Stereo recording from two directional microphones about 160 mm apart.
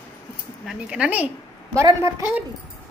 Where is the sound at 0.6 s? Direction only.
5° right (ahead or behind).